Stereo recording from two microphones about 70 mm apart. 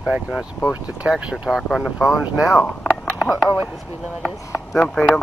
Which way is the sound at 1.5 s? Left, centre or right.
Centre.